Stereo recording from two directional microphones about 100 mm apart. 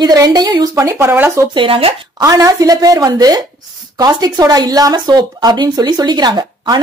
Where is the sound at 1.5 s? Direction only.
65° right (ahead or behind).